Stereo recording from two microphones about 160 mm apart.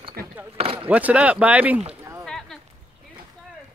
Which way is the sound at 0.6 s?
35° right (ahead or behind).